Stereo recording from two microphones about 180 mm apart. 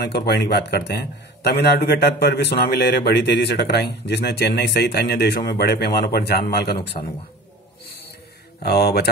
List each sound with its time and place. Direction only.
0.0 s a man's voice: 65° left (ahead or behind)
8.6 s a man's voice: 60° left (ahead or behind)